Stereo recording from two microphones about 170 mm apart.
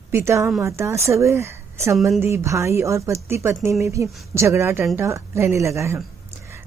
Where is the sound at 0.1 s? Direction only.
15° right (ahead or behind).